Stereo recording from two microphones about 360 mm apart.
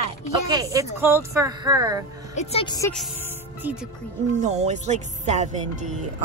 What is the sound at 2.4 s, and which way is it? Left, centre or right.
Speech, centre.